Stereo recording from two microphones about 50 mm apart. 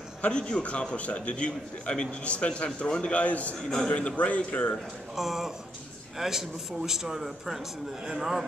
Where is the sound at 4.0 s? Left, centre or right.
Left.